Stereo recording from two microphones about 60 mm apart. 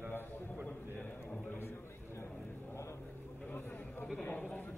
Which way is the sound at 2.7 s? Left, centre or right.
Left.